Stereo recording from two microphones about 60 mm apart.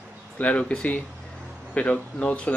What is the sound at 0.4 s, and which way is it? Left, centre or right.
Speech, centre.